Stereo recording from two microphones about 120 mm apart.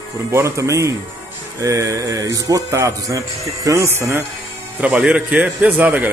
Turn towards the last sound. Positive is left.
turn(degrees=-15)  # may be behind; listen again after turning